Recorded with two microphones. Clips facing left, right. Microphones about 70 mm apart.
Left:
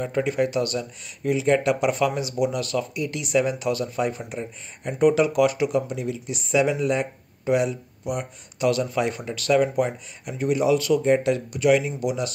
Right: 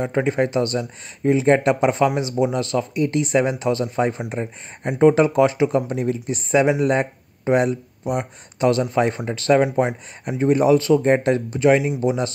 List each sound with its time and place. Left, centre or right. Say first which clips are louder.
0.0 s speech: right 3 dB; right
5.9 s speech: right 6 dB; right
8.0 s speech: right 2 dB; right